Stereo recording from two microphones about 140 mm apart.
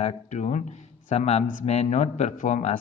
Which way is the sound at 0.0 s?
60° left (ahead or behind).